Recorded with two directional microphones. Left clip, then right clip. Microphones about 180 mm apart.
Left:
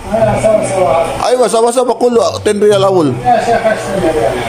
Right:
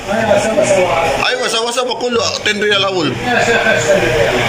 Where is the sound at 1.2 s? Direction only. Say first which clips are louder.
Left 6 dB; 50° left (ahead or behind).